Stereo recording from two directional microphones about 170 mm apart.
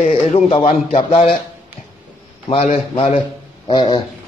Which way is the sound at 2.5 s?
35° left (ahead or behind).